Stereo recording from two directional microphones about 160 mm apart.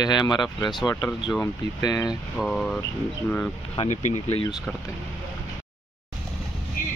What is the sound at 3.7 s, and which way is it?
Speech, 45° left (ahead or behind).